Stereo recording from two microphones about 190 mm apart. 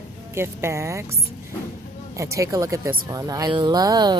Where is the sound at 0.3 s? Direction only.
15° right (ahead or behind).